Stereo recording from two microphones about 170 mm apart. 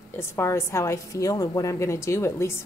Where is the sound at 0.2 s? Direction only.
15° left (ahead or behind).